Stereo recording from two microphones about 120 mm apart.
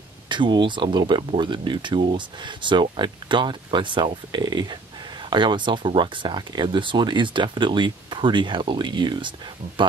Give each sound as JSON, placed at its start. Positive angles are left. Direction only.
{"t": 0.3, "sound": "speech", "side_deg": -40}